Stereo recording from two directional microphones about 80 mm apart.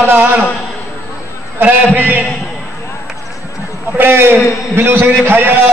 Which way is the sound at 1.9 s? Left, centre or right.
Right.